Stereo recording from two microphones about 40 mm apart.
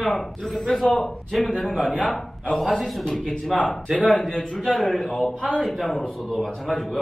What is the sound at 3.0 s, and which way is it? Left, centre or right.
Speech, left.